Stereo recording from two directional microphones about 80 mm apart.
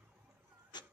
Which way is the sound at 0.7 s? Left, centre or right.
Left.